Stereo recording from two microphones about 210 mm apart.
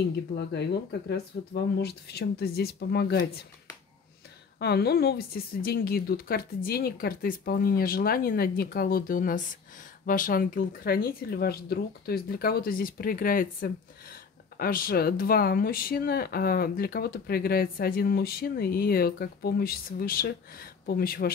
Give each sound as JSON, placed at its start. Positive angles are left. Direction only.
{"t": 0.5, "sound": "speech", "side_deg": 55}
{"t": 4.6, "sound": "speech", "side_deg": 50}